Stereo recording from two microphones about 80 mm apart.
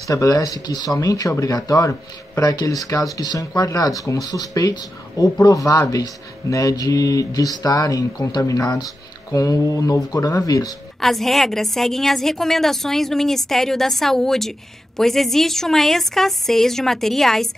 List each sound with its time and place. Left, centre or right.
0.1 s speech: left
11.0 s a woman's voice: centre